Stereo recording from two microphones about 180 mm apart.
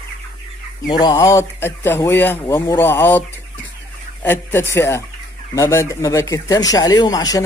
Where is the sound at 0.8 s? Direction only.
25° left (ahead or behind).